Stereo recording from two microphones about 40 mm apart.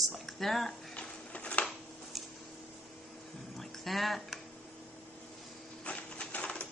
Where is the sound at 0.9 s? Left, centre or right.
Left.